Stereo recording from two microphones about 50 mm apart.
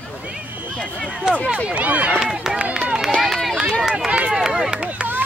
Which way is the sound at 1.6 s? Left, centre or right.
Right.